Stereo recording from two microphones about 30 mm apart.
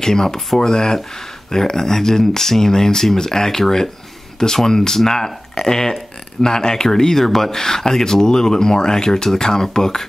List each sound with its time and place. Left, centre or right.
0.0 s speech: centre
4.6 s speech: centre